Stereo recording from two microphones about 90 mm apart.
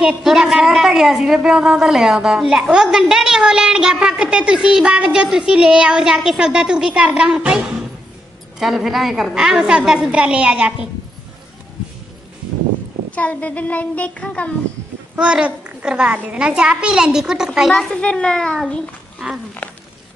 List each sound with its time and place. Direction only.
0.0 s a woman's voice: 5° right (ahead or behind)
13.1 s speech: 15° left (ahead or behind)
15.1 s a woman's voice: 10° right (ahead or behind)
17.7 s speech: 10° left (ahead or behind)
19.1 s a sound: 10° right (ahead or behind)
19.6 s a sound: 20° left (ahead or behind)